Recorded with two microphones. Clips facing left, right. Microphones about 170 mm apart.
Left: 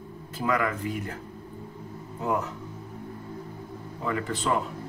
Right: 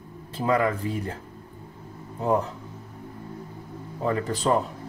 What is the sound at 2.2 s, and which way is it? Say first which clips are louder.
Speech: right 4 dB; 30° right (ahead or behind).